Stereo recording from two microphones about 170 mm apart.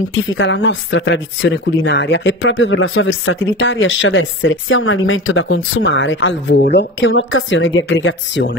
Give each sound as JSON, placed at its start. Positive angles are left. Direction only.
{"t": 0.1, "sound": "speech", "side_deg": 90}